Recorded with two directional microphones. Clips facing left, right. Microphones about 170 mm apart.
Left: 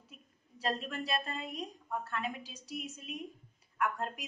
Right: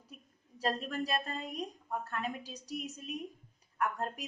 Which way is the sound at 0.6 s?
40° right (ahead or behind).